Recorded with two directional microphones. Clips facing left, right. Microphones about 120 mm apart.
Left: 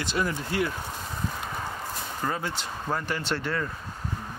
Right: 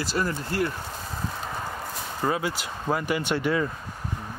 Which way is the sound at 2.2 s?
10° right (ahead or behind).